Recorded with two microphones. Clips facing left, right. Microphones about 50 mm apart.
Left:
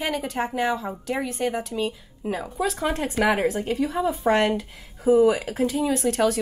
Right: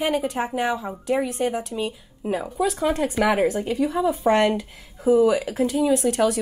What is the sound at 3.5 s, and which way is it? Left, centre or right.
Speech, left.